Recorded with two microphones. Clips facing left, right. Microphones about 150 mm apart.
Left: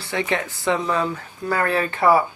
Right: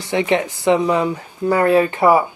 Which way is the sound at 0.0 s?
20° right (ahead or behind).